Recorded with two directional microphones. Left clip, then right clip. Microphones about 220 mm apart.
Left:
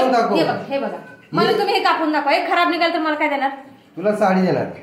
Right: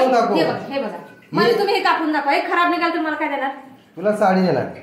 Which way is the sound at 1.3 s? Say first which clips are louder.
Even; 15° left (ahead or behind).